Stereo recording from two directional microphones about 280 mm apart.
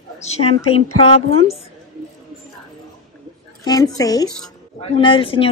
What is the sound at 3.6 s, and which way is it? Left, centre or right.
A woman's voice, centre.